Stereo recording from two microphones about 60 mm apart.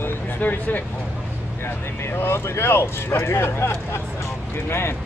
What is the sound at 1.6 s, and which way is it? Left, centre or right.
Speech, left.